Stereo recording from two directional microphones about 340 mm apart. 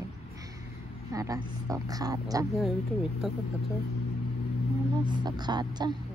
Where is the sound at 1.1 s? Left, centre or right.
Centre.